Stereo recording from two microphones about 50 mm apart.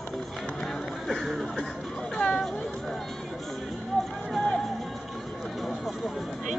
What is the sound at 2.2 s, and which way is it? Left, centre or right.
Speech, centre.